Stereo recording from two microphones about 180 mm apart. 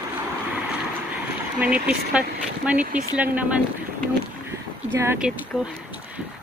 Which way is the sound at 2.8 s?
45° right (ahead or behind).